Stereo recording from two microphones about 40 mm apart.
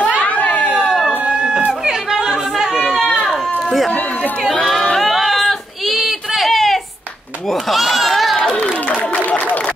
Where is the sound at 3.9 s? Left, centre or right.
Left.